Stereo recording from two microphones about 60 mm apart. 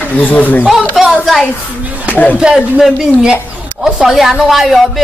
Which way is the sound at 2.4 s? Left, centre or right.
Centre.